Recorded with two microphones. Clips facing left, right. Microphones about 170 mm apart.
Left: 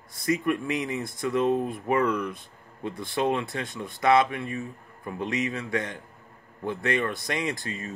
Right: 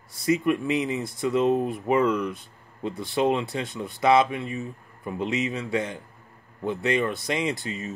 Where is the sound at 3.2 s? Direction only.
20° right (ahead or behind).